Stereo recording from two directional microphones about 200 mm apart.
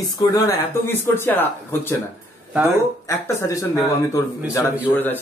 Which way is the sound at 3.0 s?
15° left (ahead or behind).